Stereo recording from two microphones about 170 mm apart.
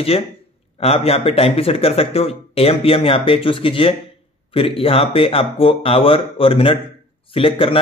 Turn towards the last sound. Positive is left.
turn(degrees=30)  # may be behind; listen again after turning